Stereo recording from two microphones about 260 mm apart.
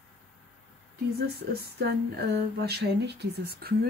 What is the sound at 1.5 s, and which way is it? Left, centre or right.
Speech, right.